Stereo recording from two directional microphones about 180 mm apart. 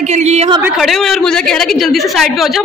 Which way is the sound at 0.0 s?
40° right (ahead or behind).